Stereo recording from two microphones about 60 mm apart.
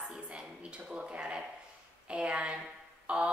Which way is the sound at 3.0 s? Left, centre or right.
Centre.